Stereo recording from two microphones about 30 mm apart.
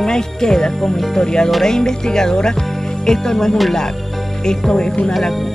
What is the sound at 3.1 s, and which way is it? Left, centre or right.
Music, centre.